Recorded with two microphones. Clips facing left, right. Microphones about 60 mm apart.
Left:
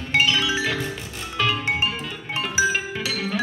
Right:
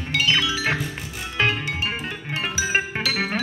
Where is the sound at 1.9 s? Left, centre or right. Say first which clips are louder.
Right 1 dB; right.